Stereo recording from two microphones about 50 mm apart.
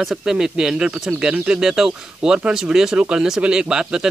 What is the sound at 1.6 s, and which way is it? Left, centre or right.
Speech, centre.